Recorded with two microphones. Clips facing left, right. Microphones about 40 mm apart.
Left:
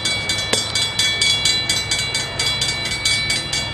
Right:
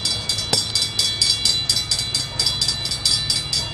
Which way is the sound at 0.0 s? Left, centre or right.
Left.